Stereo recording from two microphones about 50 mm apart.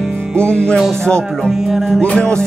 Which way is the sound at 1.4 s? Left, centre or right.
Centre.